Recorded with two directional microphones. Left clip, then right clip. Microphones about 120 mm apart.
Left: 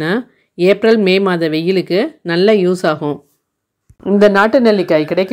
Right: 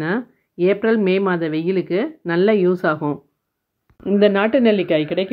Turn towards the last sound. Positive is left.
turn(degrees=15)  # may be behind; listen again after turning